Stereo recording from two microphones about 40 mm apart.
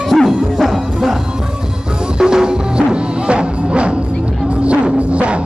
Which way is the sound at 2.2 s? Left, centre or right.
Centre.